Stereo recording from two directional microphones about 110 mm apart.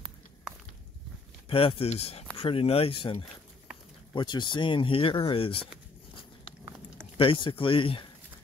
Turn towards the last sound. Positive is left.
turn(degrees=50)  # may be behind; listen again after turning